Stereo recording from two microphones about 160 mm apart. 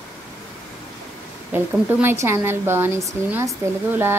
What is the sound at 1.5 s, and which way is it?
Speech, 15° right (ahead or behind).